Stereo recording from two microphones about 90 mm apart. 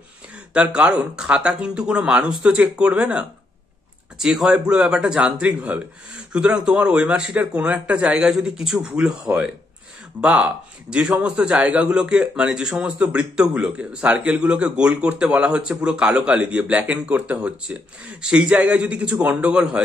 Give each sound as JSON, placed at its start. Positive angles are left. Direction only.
{"t": 0.5, "sound": "a man's voice", "side_deg": -10}
{"t": 10.2, "sound": "a man's voice", "side_deg": -15}